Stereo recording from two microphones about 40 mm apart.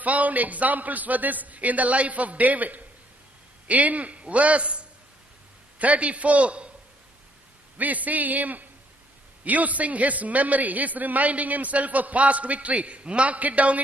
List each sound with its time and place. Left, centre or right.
0.0 s a man's voice: right
7.7 s a man's voice: right